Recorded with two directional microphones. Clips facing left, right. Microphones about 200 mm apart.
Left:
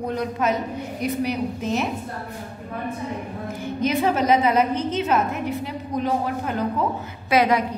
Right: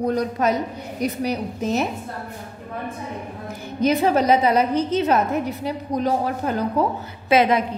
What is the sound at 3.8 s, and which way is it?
A woman's voice, 35° right (ahead or behind).